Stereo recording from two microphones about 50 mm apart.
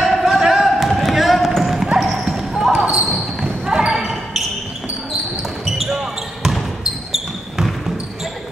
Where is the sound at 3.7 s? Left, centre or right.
Centre.